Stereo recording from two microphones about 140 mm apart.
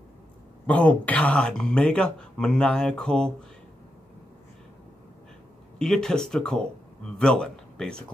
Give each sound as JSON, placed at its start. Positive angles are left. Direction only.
{"t": 0.7, "sound": "speech", "side_deg": 10}
{"t": 5.8, "sound": "a man's voice", "side_deg": 5}